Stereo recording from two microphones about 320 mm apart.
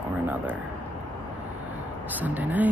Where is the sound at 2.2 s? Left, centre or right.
Centre.